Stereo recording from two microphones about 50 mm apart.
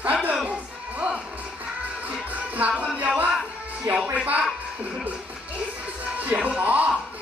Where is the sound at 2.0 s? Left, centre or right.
Right.